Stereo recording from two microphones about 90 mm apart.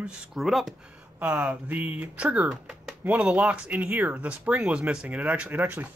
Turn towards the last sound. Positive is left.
turn(degrees=-20)  # may be behind; listen again after turning